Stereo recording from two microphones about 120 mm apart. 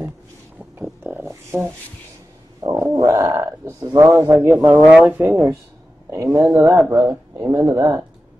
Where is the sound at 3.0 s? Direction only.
25° right (ahead or behind); by 5.6 s 10° right (ahead or behind).